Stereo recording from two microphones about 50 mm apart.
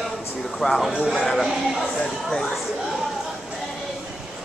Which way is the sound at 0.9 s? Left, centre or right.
Centre.